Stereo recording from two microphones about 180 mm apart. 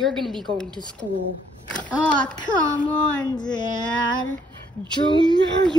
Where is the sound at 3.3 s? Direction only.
25° left (ahead or behind).